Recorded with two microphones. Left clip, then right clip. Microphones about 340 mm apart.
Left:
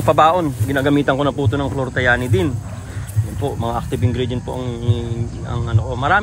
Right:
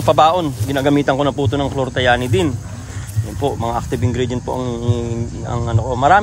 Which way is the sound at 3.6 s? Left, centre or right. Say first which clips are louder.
Right 2 dB; centre.